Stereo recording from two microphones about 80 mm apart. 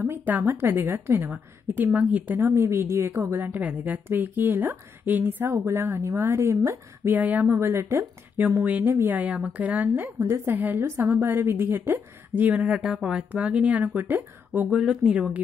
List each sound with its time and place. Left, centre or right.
0.0 s a woman's voice: right
1.3 s a woman's voice: centre
2.4 s a woman's voice: right
7.1 s a woman's voice: right
7.4 s a woman's voice: right; by 15.4 s centre